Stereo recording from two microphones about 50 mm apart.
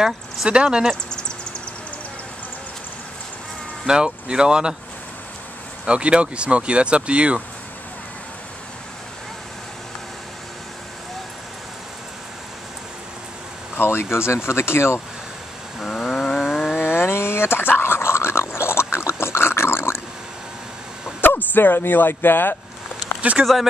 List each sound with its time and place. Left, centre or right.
0.5 s speech: centre
3.8 s speech: centre
5.9 s speech: right
13.7 s a sound: left
14.1 s speech: left
15.8 s a sound: centre
16.4 s vehicle: centre
16.7 s dog: left
21.2 s speech: left
23.4 s speech: centre